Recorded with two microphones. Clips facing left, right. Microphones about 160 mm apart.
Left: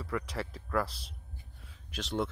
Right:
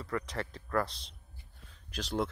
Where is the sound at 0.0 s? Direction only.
5° left (ahead or behind).